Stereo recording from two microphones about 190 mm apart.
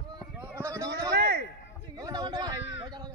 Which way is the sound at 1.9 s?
20° right (ahead or behind).